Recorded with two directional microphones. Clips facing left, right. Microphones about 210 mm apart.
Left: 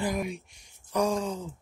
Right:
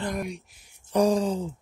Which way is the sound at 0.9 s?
30° right (ahead or behind).